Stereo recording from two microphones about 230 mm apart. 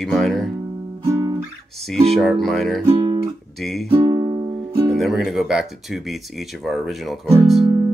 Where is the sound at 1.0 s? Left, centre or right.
Centre.